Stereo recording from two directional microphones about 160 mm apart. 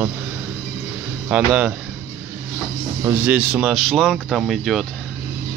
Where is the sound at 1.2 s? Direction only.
5° right (ahead or behind).